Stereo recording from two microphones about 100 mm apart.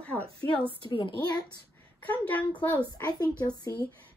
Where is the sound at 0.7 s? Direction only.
55° left (ahead or behind).